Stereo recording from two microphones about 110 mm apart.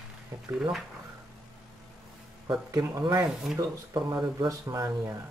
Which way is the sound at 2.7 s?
35° right (ahead or behind).